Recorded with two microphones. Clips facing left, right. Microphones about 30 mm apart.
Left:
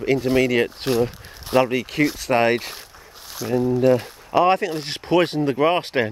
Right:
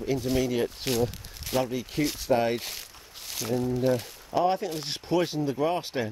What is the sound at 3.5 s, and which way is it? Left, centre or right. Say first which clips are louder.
Speech: left 8 dB; left.